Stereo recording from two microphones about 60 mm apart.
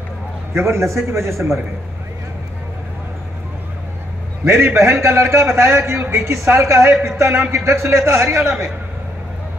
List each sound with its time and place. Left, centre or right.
0.6 s a man's voice: right
4.5 s a man's voice: right